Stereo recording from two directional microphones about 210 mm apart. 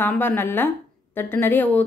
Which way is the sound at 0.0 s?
10° left (ahead or behind).